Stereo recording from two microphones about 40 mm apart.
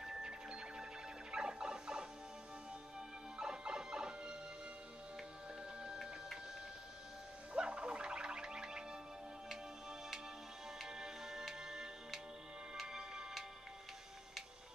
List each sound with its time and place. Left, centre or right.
0.0 s music: centre
3.3 s music: centre
7.5 s music: right
9.5 s music: centre